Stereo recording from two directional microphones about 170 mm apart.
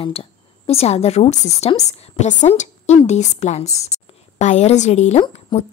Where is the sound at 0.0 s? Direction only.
35° left (ahead or behind).